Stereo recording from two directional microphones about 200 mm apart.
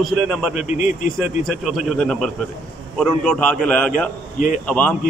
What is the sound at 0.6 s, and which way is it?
Speech, 40° left (ahead or behind).